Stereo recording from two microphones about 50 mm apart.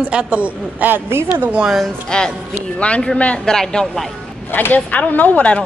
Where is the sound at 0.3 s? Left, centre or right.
Right.